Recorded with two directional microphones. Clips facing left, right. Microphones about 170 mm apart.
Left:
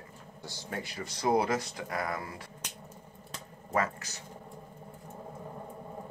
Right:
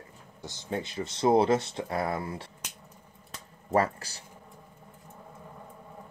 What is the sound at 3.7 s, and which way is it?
Speech, 35° right (ahead or behind).